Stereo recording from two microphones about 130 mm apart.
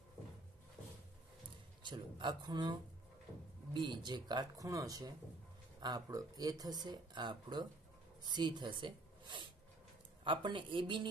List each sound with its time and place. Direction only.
1.8 s speech: 35° right (ahead or behind)